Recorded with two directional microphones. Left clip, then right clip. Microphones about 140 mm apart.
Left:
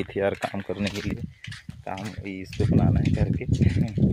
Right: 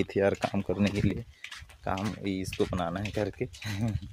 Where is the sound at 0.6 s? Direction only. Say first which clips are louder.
Even; 15° right (ahead or behind).